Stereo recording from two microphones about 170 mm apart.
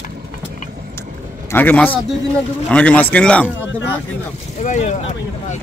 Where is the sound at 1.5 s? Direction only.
10° left (ahead or behind).